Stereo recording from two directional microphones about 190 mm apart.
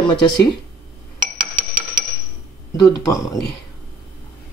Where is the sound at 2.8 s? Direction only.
20° left (ahead or behind).